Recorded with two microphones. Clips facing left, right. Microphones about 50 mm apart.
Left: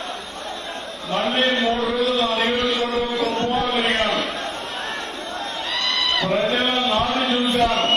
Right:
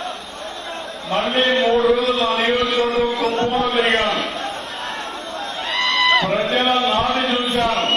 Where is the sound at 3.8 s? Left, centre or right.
Right.